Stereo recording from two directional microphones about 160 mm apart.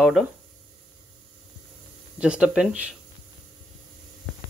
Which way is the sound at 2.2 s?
5° right (ahead or behind).